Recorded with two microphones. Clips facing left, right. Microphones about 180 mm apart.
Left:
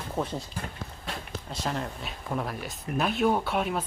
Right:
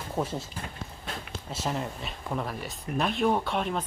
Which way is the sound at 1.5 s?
5° right (ahead or behind).